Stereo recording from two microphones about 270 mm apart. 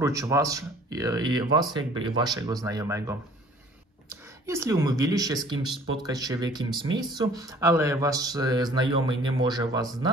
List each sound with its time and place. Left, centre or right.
0.0 s speech: centre
4.5 s speech: centre